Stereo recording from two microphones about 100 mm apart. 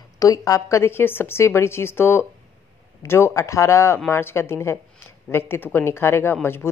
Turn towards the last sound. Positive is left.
turn(degrees=25)  # may be behind; listen again after turning